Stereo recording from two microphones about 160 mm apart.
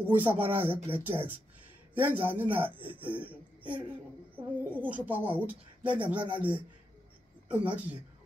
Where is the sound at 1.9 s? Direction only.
10° right (ahead or behind).